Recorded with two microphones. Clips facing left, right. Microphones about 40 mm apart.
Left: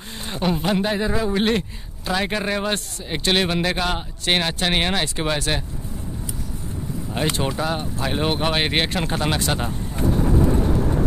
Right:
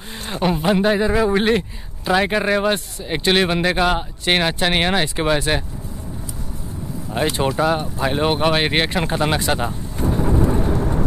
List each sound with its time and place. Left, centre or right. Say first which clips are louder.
0.1 s speech: right 3 dB; centre
1.1 s speech: right 5 dB; right
1.4 s speech: right 3 dB; centre
7.1 s speech: right 4 dB; centre
10.0 s vehicle: right 1 dB; centre